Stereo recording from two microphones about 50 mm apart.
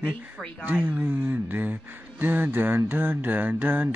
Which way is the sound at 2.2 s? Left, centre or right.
Right.